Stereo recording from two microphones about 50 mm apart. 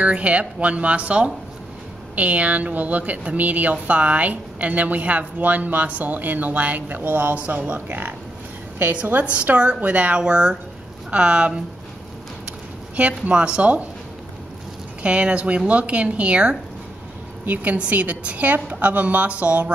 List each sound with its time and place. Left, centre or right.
0.0 s a woman's voice: right
9.0 s a woman's voice: right
15.0 s a woman's voice: right